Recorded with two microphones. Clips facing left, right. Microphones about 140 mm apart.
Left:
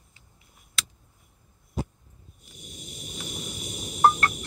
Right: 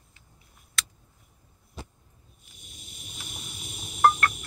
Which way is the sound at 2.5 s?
45° left (ahead or behind).